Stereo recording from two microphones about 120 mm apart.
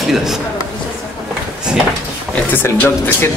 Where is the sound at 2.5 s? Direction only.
15° left (ahead or behind).